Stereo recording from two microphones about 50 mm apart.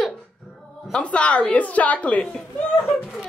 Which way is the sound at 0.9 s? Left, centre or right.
Left.